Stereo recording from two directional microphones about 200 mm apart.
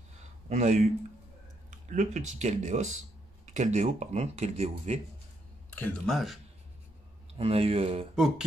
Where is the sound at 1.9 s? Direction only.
35° right (ahead or behind).